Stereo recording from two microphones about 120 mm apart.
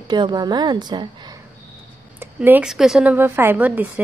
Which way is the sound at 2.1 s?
15° right (ahead or behind).